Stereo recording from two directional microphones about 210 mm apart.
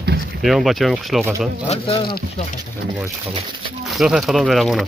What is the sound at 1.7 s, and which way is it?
Speech, 25° left (ahead or behind).